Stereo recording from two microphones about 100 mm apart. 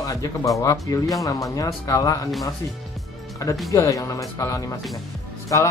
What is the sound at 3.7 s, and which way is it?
Speech, 35° left (ahead or behind).